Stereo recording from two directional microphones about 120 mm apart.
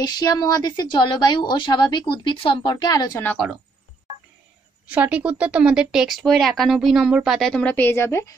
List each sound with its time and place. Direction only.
0.0 s speech: 35° left (ahead or behind)
4.8 s speech: 10° right (ahead or behind)
7.7 s a woman's voice: 15° left (ahead or behind)